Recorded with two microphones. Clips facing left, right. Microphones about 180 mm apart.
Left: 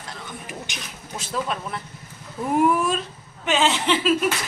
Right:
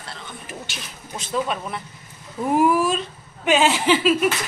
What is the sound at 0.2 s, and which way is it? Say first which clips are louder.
Speech: left 1 dB; 15° left (ahead or behind).